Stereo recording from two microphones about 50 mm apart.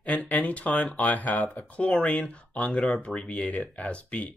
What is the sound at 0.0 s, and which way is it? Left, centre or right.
Speech, left.